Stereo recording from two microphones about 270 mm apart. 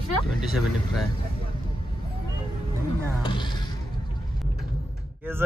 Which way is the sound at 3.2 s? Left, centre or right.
Centre.